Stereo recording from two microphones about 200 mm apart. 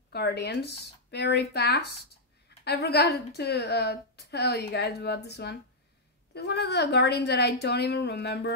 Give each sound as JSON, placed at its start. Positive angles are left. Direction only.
{"t": 0.1, "sound": "a woman's voice", "side_deg": 55}